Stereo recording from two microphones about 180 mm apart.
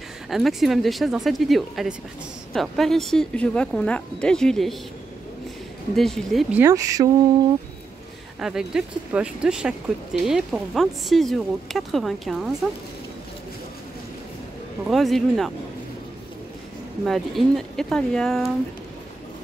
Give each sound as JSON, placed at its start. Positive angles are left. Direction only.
{"t": 0.3, "sound": "speech", "side_deg": 0}
{"t": 5.9, "sound": "speech", "side_deg": 0}
{"t": 6.5, "sound": "speech", "side_deg": -15}
{"t": 8.4, "sound": "speech", "side_deg": -5}
{"t": 14.9, "sound": "speech", "side_deg": 0}
{"t": 17.0, "sound": "speech", "side_deg": 0}